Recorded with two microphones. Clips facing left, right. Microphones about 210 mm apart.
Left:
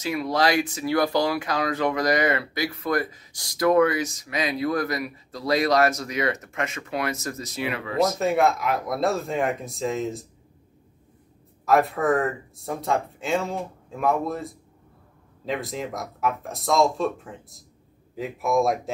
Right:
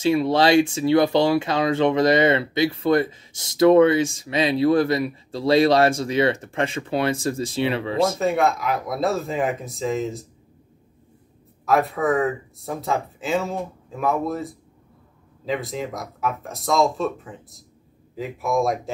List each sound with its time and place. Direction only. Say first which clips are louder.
0.0 s speech: right 5 dB; 30° right (ahead or behind)
8.2 s speech: right 1 dB; centre (ahead or behind)
11.6 s speech: even; centre (ahead or behind)